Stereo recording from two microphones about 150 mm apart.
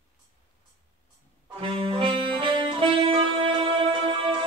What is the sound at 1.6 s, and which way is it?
Music, 35° right (ahead or behind).